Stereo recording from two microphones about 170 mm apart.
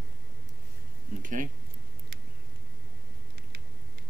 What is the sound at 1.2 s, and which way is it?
Speech, 50° right (ahead or behind).